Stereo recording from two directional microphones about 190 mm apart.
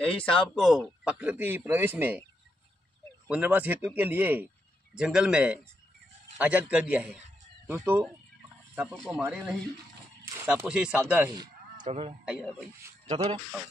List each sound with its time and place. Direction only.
0.0 s a man's voice: 5° left (ahead or behind)
3.3 s a man's voice: 5° right (ahead or behind)
11.9 s a man's voice: 30° right (ahead or behind)
12.3 s speech: 5° right (ahead or behind)
13.0 s speech: 35° right (ahead or behind)